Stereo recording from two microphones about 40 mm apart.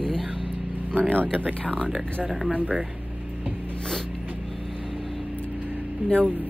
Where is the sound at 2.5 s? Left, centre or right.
Right.